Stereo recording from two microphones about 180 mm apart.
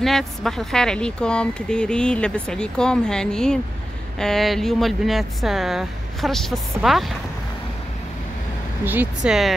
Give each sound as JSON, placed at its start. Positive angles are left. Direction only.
{"t": 0.0, "sound": "speech", "side_deg": 0}
{"t": 8.8, "sound": "speech", "side_deg": -10}